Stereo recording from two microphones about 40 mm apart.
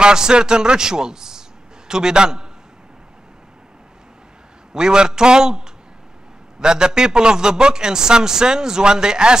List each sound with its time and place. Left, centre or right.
0.0 s a man's voice: centre
4.7 s a man's voice: centre